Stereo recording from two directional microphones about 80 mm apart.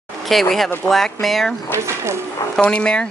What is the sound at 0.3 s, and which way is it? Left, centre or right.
Speech, centre.